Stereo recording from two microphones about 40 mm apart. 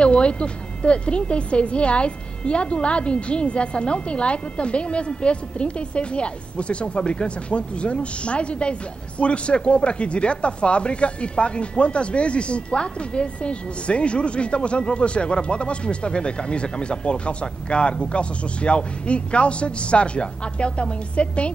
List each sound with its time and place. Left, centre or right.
0.0 s speech: left